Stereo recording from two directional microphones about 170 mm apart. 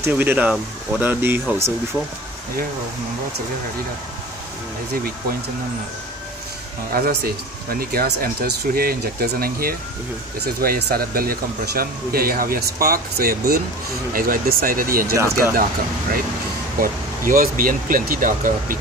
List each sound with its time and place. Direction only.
0.0 s speech: 10° right (ahead or behind)
6.9 s speech: 65° right (ahead or behind)
15.1 s speech: 15° right (ahead or behind)
16.8 s speech: 55° right (ahead or behind)